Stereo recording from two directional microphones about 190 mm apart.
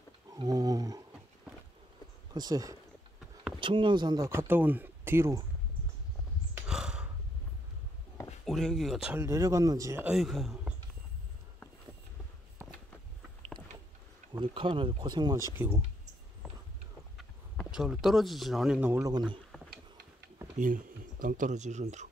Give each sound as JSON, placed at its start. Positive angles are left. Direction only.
{"t": 0.3, "sound": "speech", "side_deg": -20}
{"t": 2.3, "sound": "speech", "side_deg": -20}
{"t": 6.5, "sound": "a sound", "side_deg": -5}
{"t": 8.5, "sound": "speech", "side_deg": 0}
{"t": 10.0, "sound": "speech", "side_deg": 0}
{"t": 14.3, "sound": "speech", "side_deg": -25}
{"t": 15.5, "sound": "speech", "side_deg": -10}
{"t": 16.4, "sound": "a sound", "side_deg": -5}
{"t": 17.2, "sound": "speech", "side_deg": 0}
{"t": 20.5, "sound": "speech", "side_deg": -45}